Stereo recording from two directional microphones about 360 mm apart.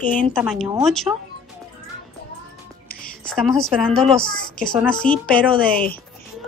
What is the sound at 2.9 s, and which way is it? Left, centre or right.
Music, left.